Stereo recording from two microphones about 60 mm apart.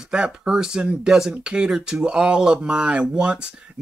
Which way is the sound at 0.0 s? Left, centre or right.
Centre.